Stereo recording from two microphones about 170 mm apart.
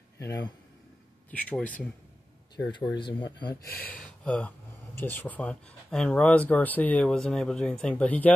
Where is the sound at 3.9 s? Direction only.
10° left (ahead or behind).